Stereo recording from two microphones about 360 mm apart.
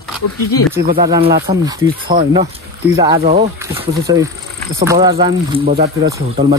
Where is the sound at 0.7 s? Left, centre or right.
Right.